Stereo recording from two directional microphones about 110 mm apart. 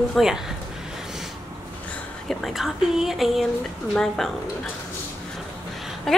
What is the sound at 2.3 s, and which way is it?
A woman's voice, centre (ahead or behind).